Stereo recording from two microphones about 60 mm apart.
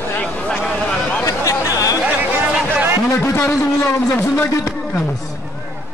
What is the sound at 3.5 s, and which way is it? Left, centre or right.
Speech, left.